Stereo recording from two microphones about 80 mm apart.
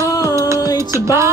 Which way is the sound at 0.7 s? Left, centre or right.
Right.